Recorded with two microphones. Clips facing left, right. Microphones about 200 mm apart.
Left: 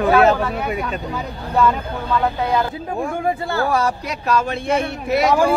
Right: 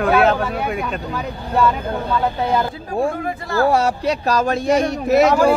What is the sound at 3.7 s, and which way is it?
A man's voice, 30° right (ahead or behind).